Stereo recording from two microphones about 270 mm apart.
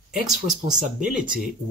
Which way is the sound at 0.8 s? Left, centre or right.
Right.